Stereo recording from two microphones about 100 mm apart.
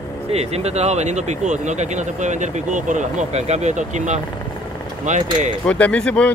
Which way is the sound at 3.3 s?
90° right.